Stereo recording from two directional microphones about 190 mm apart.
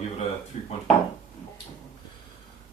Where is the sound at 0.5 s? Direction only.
35° left (ahead or behind).